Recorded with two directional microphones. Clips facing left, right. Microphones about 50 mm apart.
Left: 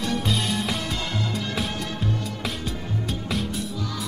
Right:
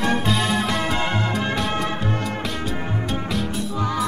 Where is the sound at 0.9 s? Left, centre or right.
Right.